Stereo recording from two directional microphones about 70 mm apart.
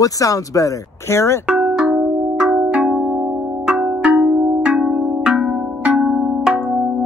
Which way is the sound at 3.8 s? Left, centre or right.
Centre.